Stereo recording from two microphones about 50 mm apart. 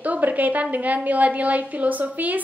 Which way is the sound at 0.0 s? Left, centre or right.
Right.